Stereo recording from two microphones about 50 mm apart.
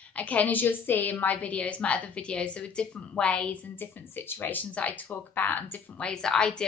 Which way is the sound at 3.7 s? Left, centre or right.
Left.